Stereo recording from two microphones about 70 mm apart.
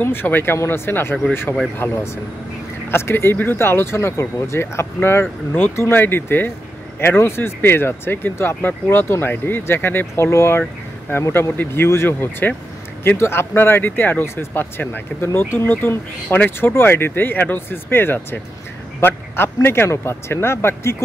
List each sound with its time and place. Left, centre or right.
0.0 s speech: left
14.2 s speech: left